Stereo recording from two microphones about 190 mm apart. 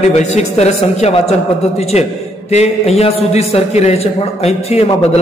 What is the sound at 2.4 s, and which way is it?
A man's voice, 35° left (ahead or behind).